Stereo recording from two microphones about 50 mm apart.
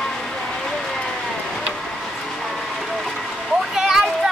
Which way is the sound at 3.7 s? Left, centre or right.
Centre.